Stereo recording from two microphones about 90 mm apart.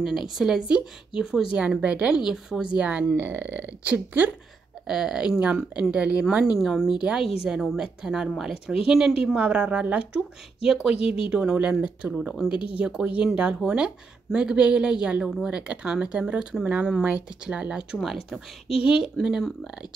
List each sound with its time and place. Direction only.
0.0 s speech: 5° right (ahead or behind); by 4.4 s 20° right (ahead or behind)
4.8 s speech: 5° right (ahead or behind)
6.6 s speech: centre (ahead or behind)
7.0 s speech: 10° right (ahead or behind)
11.0 s speech: 90° left
11.2 s speech: 10° right (ahead or behind)
19.4 s speech: 5° right (ahead or behind)